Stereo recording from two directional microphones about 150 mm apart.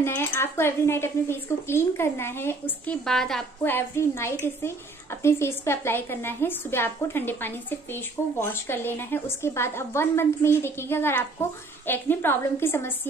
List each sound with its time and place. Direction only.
0.0 s a woman's voice: 15° left (ahead or behind)
3.6 s a woman's voice: 15° left (ahead or behind)